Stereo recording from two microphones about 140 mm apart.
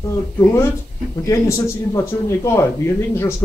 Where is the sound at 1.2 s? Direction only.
20° left (ahead or behind).